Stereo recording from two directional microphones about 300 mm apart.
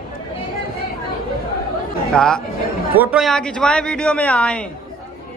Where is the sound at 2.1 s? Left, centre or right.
Centre.